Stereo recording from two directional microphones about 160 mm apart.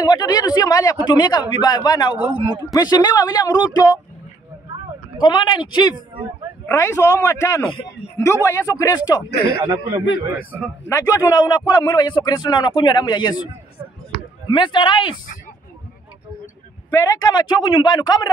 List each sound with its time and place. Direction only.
0.0 s a man's voice: 25° left (ahead or behind)
5.2 s a man's voice: 30° left (ahead or behind)
9.6 s a man's voice: 15° right (ahead or behind)
10.9 s a man's voice: 20° left (ahead or behind)
14.5 s a man's voice: 30° left (ahead or behind)
16.9 s a man's voice: 20° left (ahead or behind)